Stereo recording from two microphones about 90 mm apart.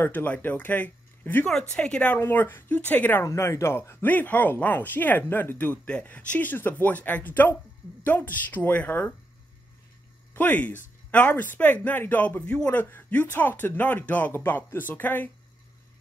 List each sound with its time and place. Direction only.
0.0 s speech: 20° left (ahead or behind)
3.3 s speech: 35° left (ahead or behind); by 9.1 s 20° left (ahead or behind)
10.3 s speech: 20° left (ahead or behind)